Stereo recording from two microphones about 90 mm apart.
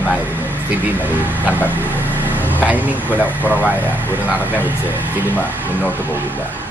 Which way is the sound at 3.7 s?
20° right (ahead or behind).